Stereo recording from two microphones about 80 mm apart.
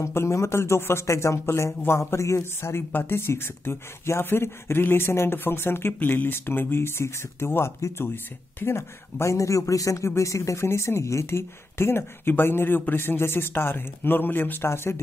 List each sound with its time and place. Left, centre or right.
0.0 s a man's voice: left